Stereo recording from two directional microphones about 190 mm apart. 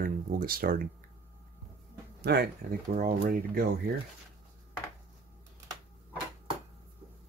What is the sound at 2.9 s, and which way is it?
Speech, 50° right (ahead or behind).